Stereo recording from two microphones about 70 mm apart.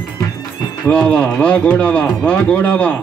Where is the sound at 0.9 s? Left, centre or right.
Centre.